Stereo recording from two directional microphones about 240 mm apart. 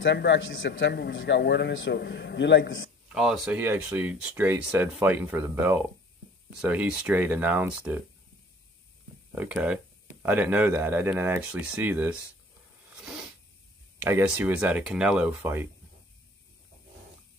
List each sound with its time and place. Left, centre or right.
0.0 s a man's voice: left
3.1 s speech: centre
9.3 s speech: centre
12.9 s a sound: centre
14.0 s speech: centre